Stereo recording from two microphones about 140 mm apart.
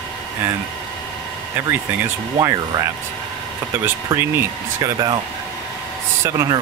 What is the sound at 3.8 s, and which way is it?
Speech, 15° right (ahead or behind).